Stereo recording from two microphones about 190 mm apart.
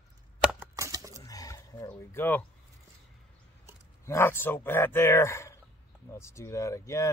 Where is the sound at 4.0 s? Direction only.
15° left (ahead or behind).